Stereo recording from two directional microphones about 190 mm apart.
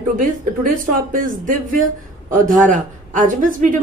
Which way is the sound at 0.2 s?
45° right (ahead or behind).